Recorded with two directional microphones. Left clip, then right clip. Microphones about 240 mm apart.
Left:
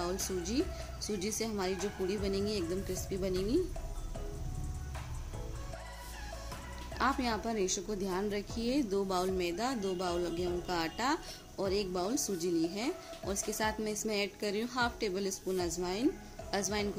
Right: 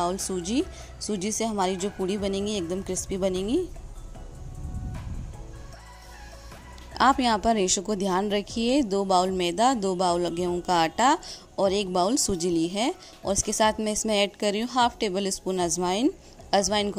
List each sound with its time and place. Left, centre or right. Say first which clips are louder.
0.0 s a woman's voice: right 8 dB; right
6.9 s a woman's voice: right 11 dB; right